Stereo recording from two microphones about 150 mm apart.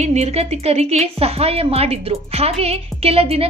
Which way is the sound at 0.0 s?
45° right (ahead or behind).